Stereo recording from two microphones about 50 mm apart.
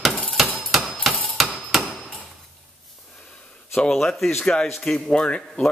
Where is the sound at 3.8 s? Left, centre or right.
Centre.